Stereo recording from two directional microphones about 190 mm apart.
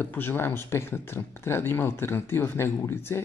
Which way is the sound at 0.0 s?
10° left (ahead or behind).